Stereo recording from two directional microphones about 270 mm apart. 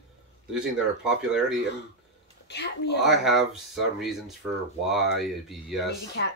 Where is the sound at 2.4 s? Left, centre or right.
Left.